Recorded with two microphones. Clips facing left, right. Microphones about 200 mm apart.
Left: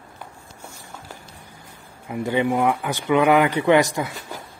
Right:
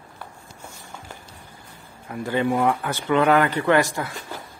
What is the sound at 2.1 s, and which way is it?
Speech, 15° left (ahead or behind).